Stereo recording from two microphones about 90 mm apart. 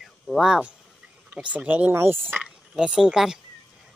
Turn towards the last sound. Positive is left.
turn(degrees=-5)  # may be behind; listen again after turning